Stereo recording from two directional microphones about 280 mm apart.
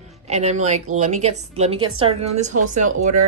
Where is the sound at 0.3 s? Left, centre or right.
Right.